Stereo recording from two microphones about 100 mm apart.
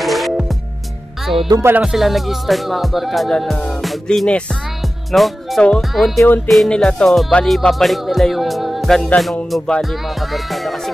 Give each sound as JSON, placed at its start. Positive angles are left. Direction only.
{"t": 0.0, "sound": "music", "side_deg": 0}
{"t": 6.1, "sound": "music", "side_deg": 20}
{"t": 6.4, "sound": "music", "side_deg": 0}